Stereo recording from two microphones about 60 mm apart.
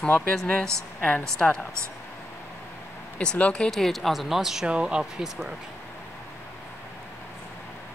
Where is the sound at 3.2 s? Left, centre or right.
Centre.